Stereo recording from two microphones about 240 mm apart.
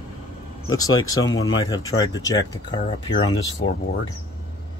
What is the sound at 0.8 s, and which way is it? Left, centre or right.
Speech, centre.